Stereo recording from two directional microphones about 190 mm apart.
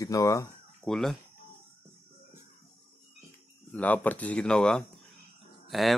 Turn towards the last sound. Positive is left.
turn(degrees=0)  # may be behind; listen again after turning